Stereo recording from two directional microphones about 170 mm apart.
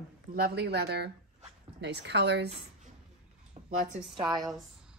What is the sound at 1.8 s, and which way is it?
Speech, 90° right.